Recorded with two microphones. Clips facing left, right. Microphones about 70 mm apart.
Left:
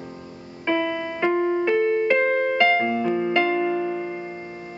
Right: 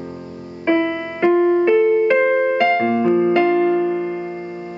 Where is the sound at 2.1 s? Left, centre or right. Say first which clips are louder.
Right 5 dB; centre.